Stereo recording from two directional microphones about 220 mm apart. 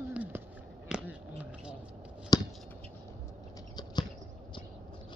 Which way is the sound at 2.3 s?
15° left (ahead or behind).